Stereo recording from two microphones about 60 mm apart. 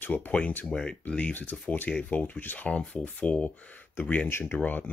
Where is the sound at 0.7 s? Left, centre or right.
Centre.